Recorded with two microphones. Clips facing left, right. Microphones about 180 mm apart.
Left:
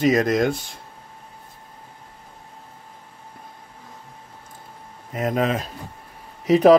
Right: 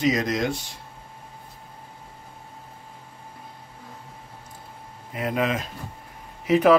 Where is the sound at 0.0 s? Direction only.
55° left (ahead or behind).